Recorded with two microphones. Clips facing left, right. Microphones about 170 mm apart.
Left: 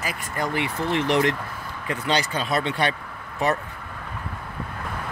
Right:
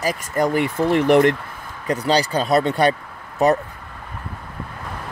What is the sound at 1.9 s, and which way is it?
Speech, 35° right (ahead or behind).